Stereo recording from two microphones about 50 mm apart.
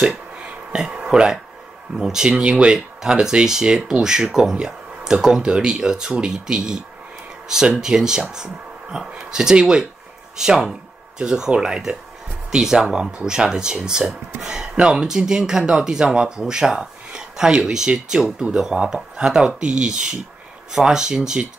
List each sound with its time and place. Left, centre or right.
0.7 s speech: centre
2.4 s speech: right